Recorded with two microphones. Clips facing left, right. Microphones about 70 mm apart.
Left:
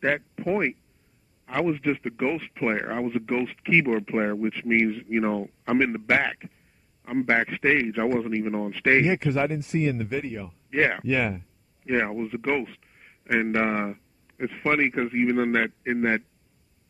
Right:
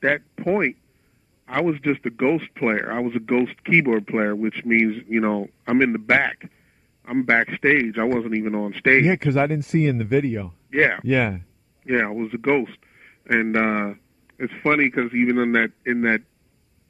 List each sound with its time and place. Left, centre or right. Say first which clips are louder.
0.0 s a man's voice: right 4 dB; right